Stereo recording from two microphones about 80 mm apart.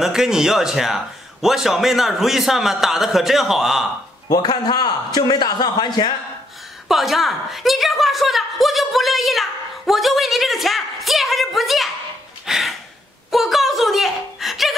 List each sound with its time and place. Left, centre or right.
0.0 s a man's voice: centre
4.4 s a man's voice: left
6.9 s a woman's voice: centre
12.4 s a sound: centre